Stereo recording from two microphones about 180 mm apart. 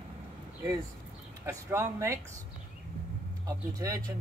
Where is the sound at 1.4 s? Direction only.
15° right (ahead or behind).